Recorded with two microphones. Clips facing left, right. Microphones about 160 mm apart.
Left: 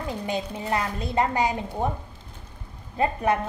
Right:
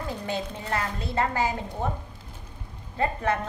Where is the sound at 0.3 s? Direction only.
15° left (ahead or behind).